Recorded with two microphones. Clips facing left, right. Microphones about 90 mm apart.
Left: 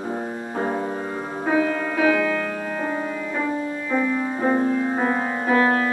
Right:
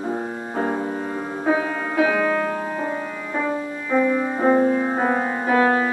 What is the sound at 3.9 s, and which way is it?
Music, 5° right (ahead or behind).